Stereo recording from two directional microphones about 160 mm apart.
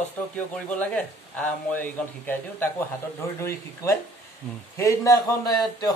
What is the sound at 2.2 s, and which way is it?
Speech, 10° left (ahead or behind).